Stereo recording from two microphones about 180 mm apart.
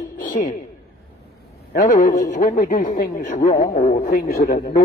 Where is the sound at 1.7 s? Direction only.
50° left (ahead or behind).